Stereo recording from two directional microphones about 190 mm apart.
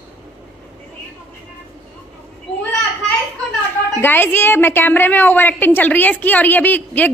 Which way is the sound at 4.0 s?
10° left (ahead or behind).